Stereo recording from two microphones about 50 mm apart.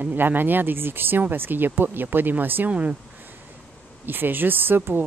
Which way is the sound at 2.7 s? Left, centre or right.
Right.